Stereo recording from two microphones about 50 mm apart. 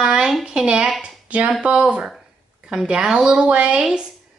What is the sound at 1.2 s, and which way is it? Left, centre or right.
Speech, right.